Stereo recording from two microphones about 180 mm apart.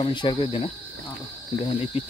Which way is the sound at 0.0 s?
25° left (ahead or behind).